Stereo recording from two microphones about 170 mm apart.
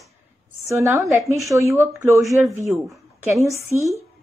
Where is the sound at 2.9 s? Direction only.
15° right (ahead or behind).